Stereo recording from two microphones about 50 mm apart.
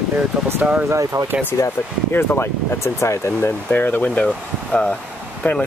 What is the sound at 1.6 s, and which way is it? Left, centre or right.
Speech, left.